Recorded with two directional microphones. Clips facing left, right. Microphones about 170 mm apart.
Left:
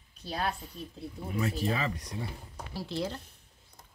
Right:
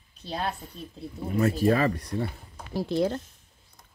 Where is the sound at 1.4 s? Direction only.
60° right (ahead or behind).